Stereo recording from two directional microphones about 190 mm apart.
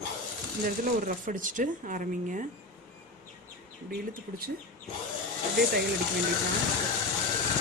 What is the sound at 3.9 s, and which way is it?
Speech, 50° right (ahead or behind).